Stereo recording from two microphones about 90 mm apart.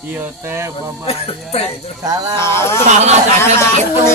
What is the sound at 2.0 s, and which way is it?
Speech, 45° right (ahead or behind).